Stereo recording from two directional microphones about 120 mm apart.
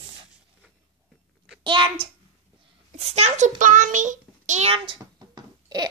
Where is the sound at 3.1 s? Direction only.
75° right (ahead or behind).